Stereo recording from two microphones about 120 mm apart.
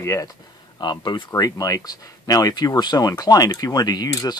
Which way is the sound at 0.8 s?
40° left (ahead or behind).